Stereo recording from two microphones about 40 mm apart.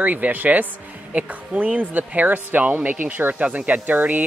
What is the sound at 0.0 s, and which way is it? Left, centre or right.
Speech, right.